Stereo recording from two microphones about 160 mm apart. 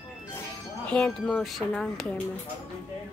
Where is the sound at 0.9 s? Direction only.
5° left (ahead or behind).